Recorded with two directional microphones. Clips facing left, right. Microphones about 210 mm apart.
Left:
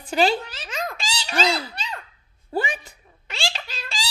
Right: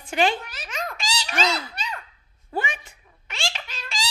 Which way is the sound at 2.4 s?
35° left (ahead or behind).